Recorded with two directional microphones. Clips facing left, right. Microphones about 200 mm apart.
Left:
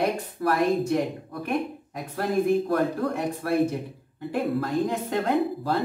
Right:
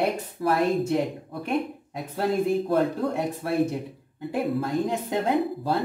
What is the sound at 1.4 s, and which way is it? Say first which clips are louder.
Speech: right 1 dB; 25° right (ahead or behind).